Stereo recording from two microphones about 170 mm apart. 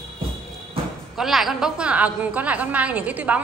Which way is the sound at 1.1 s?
Centre (ahead or behind).